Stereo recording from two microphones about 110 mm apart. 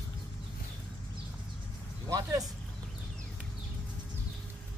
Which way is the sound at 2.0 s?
30° right (ahead or behind).